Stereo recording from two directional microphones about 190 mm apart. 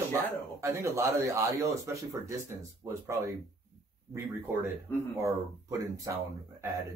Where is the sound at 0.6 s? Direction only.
15° right (ahead or behind).